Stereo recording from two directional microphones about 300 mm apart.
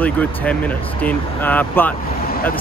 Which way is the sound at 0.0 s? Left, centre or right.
Centre.